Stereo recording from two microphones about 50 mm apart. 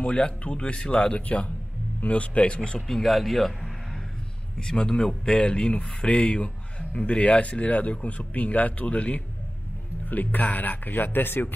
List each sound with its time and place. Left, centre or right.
0.0 s speech: left
2.9 s speech: centre
4.6 s speech: centre; by 11.5 s left